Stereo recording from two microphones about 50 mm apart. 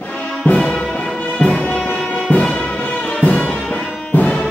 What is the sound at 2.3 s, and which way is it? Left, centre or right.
Music, left.